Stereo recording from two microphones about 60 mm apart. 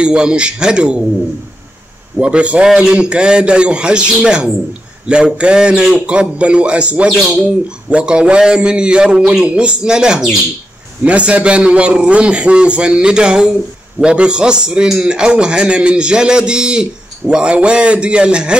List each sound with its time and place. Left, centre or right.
0.0 s a man's voice: centre
2.1 s a man's voice: centre